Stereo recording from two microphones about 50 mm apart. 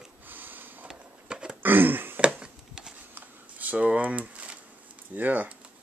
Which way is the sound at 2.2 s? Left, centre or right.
Centre.